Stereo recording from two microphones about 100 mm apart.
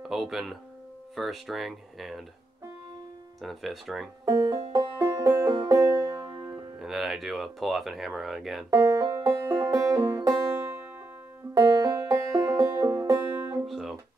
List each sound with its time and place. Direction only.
0.0 s speech: centre (ahead or behind)
3.3 s speech: centre (ahead or behind)
4.7 s music: 35° right (ahead or behind)
6.8 s speech: centre (ahead or behind)
8.6 s music: 30° right (ahead or behind)
11.5 s banjo: 35° right (ahead or behind)
13.7 s music: centre (ahead or behind)